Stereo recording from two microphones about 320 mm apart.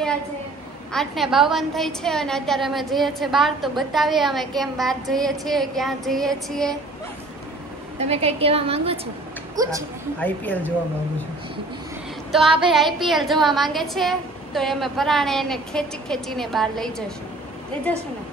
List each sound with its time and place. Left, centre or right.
0.9 s a woman's voice: centre
8.0 s a woman's voice: centre
10.2 s a woman's voice: centre
12.3 s a woman's voice: centre